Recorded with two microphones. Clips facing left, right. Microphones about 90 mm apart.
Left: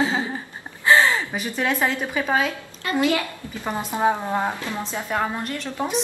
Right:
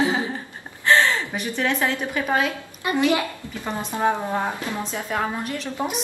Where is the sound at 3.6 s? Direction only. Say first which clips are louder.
Left 1 dB; 15° left (ahead or behind).